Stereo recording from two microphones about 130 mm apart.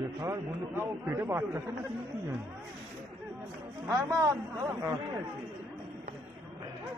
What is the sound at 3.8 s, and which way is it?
A man's voice, 25° right (ahead or behind).